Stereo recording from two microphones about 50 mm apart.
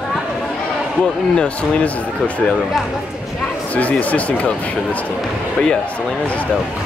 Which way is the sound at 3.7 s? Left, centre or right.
Left.